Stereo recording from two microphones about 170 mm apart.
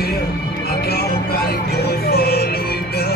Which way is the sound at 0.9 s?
65° left (ahead or behind).